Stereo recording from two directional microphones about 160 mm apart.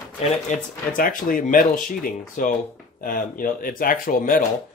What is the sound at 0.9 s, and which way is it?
Speech, 60° left (ahead or behind).